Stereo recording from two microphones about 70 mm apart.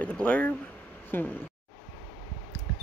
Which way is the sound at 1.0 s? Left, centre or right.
Left.